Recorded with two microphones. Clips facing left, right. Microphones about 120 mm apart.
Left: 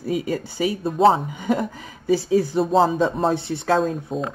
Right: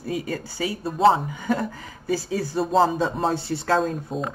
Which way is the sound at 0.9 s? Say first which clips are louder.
Left 1 dB; centre (ahead or behind).